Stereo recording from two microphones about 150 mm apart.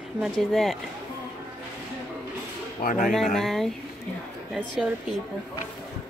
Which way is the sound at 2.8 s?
65° left (ahead or behind).